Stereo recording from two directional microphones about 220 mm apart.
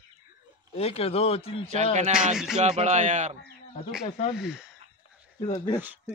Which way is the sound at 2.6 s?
30° right (ahead or behind).